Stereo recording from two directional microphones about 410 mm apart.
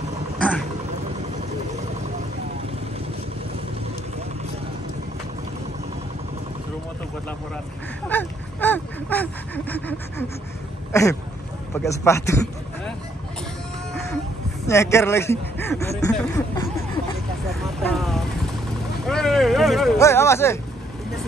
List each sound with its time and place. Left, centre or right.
8.1 s a sound: centre
10.9 s speech: centre
14.7 s speech: centre
17.5 s vehicle: centre